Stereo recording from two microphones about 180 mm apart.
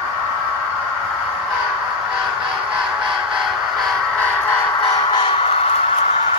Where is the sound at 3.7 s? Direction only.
Centre (ahead or behind).